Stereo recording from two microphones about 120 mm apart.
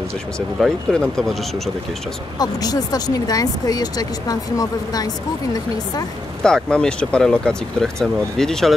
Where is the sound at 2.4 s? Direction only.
30° left (ahead or behind).